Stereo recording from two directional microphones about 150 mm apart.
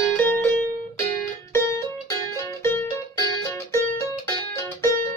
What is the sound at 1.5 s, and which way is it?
Music, 20° left (ahead or behind).